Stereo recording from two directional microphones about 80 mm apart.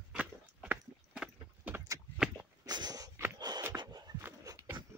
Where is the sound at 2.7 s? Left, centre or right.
Right.